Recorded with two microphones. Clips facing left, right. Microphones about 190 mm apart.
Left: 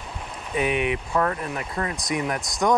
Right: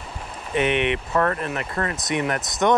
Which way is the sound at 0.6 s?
70° right (ahead or behind).